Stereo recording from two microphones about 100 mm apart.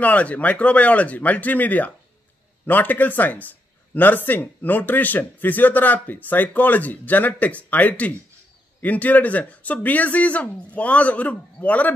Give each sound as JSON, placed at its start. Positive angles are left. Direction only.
{"t": 0.0, "sound": "speech", "side_deg": 15}